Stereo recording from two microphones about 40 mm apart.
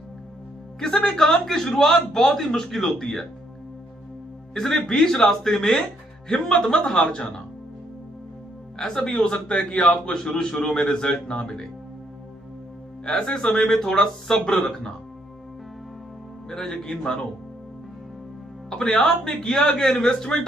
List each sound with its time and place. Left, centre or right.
0.7 s a man's voice: centre
4.6 s speech: centre
8.7 s speech: centre
13.0 s speech: centre
16.4 s speech: centre
18.7 s speech: centre